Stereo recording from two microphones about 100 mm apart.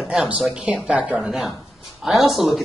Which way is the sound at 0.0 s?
10° right (ahead or behind).